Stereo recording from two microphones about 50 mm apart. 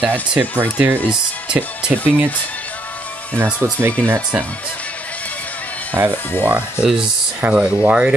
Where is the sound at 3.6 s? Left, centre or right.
Right.